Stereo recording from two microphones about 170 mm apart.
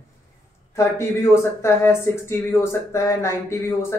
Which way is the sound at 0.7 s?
15° left (ahead or behind).